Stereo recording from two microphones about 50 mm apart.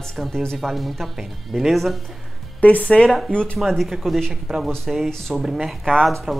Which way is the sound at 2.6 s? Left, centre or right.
Left.